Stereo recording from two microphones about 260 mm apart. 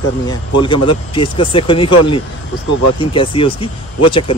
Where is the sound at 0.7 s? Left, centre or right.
Centre.